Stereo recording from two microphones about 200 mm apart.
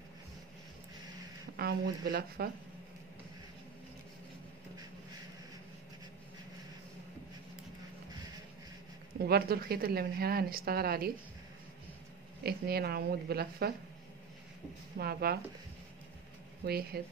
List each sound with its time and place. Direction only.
1.6 s a woman's voice: 50° right (ahead or behind)
9.2 s a woman's voice: 50° right (ahead or behind)
12.4 s a woman's voice: 50° right (ahead or behind)
15.0 s a woman's voice: 50° right (ahead or behind)
16.6 s a woman's voice: 50° right (ahead or behind)